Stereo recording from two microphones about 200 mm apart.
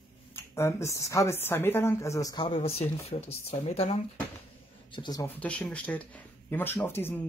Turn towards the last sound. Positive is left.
turn(degrees=10)  # may be behind; listen again after turning